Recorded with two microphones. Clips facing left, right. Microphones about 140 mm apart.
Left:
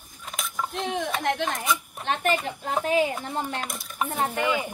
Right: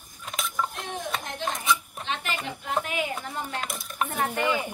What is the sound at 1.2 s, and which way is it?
Speech, 75° left (ahead or behind).